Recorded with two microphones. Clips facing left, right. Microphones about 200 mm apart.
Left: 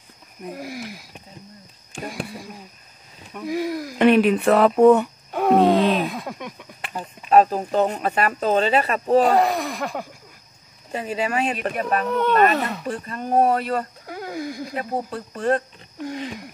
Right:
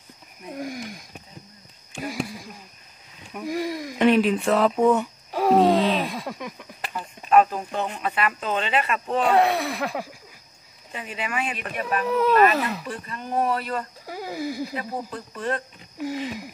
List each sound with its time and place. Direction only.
0.5 s speech: 5° left (ahead or behind)
2.0 s a sound: centre (ahead or behind)
3.3 s speech: centre (ahead or behind)
4.0 s speech: 60° left (ahead or behind)
5.3 s groan: centre (ahead or behind)
5.9 s a sound: centre (ahead or behind)
7.2 s speech: 35° left (ahead or behind)
9.3 s speech: centre (ahead or behind)
10.9 s speech: 40° left (ahead or behind)
12.1 s speech: centre (ahead or behind)
12.8 s speech: 40° left (ahead or behind)
14.0 s a sound: 5° right (ahead or behind)
15.3 s speech: 45° left (ahead or behind)
16.0 s speech: 5° right (ahead or behind)